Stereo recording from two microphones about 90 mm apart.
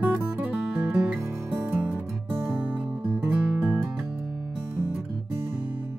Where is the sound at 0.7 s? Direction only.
10° right (ahead or behind).